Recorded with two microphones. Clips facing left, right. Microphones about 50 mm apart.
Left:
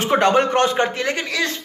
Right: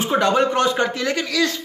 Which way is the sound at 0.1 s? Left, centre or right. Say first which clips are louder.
Left 2 dB; left.